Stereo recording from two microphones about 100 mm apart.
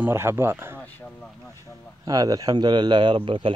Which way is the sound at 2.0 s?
40° right (ahead or behind).